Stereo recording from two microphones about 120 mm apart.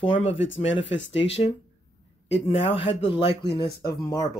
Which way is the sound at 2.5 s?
45° left (ahead or behind).